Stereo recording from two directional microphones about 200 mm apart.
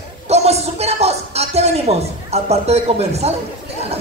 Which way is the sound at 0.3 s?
30° right (ahead or behind).